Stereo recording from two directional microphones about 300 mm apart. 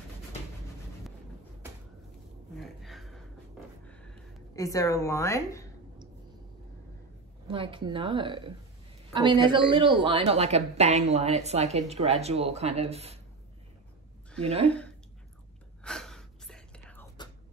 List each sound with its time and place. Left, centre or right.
2.5 s a sound: centre
7.4 s a woman's voice: centre
15.8 s whispering: centre